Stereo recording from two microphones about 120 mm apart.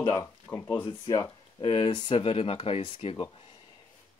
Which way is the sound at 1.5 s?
45° left (ahead or behind).